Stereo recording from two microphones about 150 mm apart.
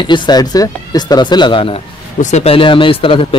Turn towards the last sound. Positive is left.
turn(degrees=35)  # may be behind; listen again after turning